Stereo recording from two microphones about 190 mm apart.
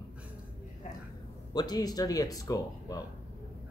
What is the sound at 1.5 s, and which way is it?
Speech, 20° left (ahead or behind).